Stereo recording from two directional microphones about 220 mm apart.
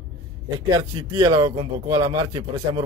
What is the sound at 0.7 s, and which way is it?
A man's voice, 20° right (ahead or behind).